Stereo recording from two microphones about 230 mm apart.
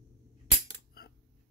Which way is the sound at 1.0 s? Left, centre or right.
Left.